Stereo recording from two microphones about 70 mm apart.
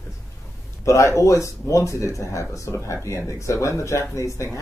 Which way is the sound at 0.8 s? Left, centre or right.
Left.